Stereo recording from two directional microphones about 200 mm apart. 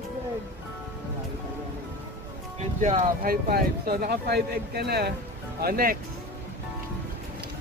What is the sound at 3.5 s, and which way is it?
Speech, 50° right (ahead or behind).